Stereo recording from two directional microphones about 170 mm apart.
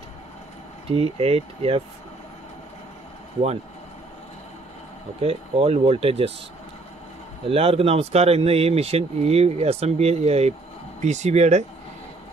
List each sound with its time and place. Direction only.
0.8 s speech: 35° right (ahead or behind)
5.2 s speech: 35° right (ahead or behind)
7.4 s speech: 35° right (ahead or behind)